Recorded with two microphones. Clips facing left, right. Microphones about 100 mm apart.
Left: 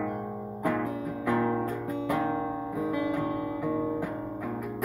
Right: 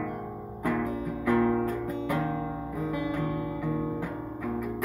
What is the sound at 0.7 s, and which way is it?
Music, 5° left (ahead or behind).